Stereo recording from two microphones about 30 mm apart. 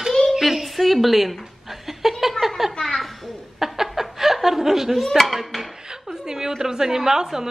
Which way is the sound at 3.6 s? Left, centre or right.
Centre.